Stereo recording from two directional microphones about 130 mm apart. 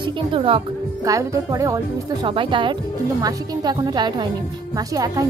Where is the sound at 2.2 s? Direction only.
40° right (ahead or behind).